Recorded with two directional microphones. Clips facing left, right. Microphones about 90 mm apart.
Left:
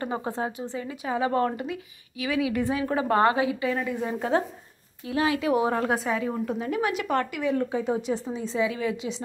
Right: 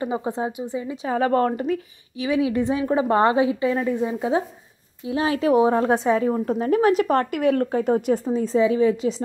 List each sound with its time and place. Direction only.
0.0 s speech: 15° right (ahead or behind)
1.1 s a woman's voice: 45° right (ahead or behind)
1.6 s a woman's voice: 30° right (ahead or behind)
4.0 s speech: 10° right (ahead or behind)
5.0 s a woman's voice: 25° right (ahead or behind)